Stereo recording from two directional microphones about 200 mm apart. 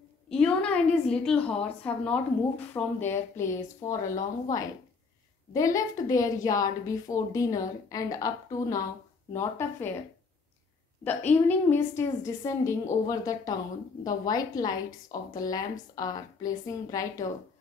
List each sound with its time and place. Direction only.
0.3 s a woman's voice: 5° left (ahead or behind)
11.1 s a woman's voice: 10° left (ahead or behind)